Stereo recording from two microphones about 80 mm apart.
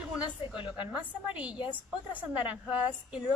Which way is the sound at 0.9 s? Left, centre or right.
Centre.